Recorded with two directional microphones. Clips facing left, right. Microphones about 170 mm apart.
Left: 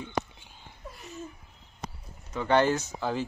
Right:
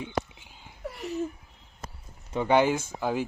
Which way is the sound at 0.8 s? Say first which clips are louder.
Right 10 dB; 75° right (ahead or behind).